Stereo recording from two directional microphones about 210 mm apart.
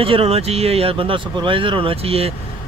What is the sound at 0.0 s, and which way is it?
Speech, 25° right (ahead or behind).